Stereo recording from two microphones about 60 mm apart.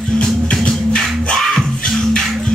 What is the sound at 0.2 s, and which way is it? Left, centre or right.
Music, centre.